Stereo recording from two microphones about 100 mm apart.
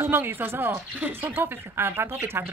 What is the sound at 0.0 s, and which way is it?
Speech, 20° right (ahead or behind).